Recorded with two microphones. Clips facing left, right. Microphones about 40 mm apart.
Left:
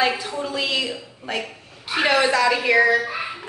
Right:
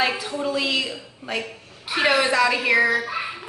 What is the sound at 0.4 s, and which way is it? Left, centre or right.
Speech, centre.